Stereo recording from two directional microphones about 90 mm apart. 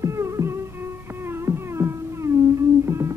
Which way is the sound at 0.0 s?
35° right (ahead or behind).